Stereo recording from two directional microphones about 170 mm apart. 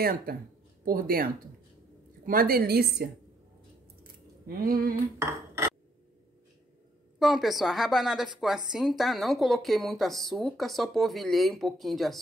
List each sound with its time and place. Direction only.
0.0 s a woman's voice: 60° right (ahead or behind)
4.5 s a woman's voice: 60° right (ahead or behind)
5.2 s cutlery: 15° right (ahead or behind)
7.2 s speech: centre (ahead or behind)